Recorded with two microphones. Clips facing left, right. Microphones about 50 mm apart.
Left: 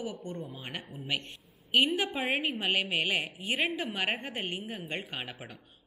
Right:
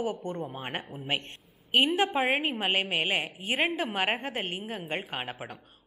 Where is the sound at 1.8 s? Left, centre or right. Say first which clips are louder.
Right 4 dB; centre.